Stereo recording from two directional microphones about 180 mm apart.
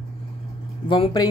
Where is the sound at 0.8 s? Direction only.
30° left (ahead or behind).